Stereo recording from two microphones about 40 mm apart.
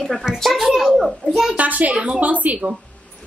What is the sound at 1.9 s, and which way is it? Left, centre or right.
Speech, right.